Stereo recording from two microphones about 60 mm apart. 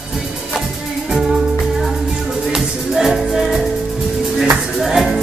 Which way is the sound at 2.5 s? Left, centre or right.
Centre.